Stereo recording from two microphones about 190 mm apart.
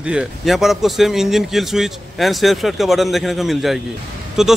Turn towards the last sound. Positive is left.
turn(degrees=0)  # may be behind; listen again after turning